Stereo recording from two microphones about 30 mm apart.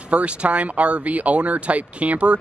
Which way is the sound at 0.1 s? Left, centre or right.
Right.